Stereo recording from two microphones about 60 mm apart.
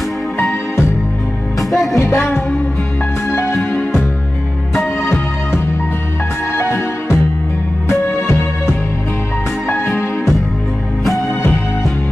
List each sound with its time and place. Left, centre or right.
1.6 s music: centre
6.6 s music: left
11.1 s music: centre